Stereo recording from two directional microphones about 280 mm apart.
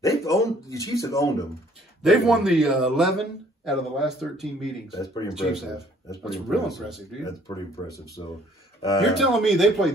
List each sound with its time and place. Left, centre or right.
0.0 s speech: centre
2.0 s a man's voice: centre
4.9 s speech: centre
5.3 s a man's voice: centre
7.4 s speech: centre
9.0 s a man's voice: centre